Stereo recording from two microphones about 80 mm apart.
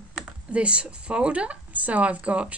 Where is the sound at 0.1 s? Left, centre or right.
Centre.